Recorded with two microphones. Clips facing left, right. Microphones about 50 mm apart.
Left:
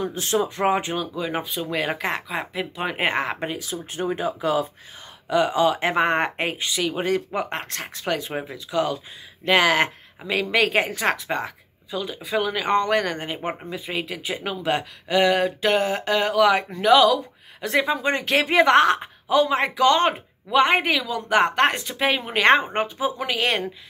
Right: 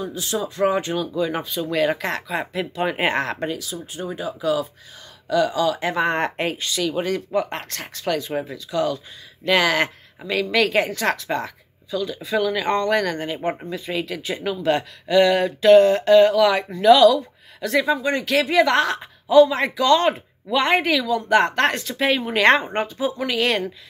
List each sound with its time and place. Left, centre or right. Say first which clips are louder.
0.0 s speech: left 3 dB; left
0.9 s speech: right 3 dB; centre
3.9 s speech: left 4 dB; left
6.1 s speech: even; centre
14.4 s speech: right 4 dB; centre
16.8 s speech: right 4 dB; centre